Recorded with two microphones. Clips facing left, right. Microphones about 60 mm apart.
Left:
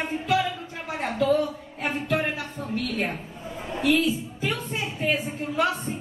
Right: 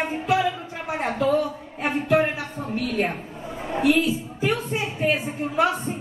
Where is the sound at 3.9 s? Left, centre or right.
Right.